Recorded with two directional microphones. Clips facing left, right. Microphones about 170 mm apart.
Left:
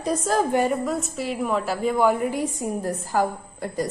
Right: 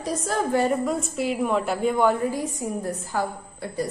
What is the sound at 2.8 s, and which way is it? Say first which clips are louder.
A woman's voice: left 7 dB; 45° left (ahead or behind).